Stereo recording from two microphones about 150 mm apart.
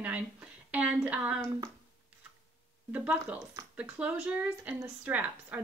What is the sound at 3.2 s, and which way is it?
Speech, 20° right (ahead or behind).